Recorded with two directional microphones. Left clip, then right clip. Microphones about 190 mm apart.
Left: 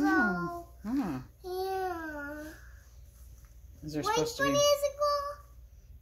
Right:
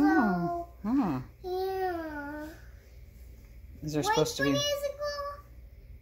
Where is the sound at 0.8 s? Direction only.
20° right (ahead or behind).